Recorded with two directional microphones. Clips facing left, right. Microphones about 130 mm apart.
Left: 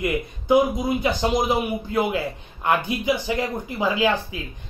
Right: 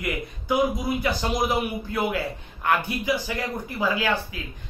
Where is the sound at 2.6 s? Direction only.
20° left (ahead or behind).